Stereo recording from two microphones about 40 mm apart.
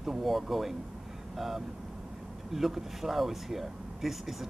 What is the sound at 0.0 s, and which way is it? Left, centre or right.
Speech, centre.